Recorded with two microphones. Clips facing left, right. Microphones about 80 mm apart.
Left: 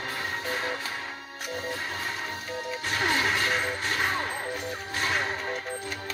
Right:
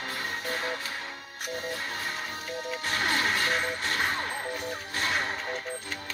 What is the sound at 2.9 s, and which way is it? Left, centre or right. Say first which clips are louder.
Music: left 2 dB; left.